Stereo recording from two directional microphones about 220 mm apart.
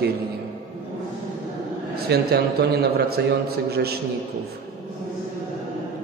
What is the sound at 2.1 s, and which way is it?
A man's voice, 45° right (ahead or behind).